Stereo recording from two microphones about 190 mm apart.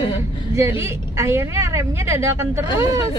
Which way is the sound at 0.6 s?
15° right (ahead or behind).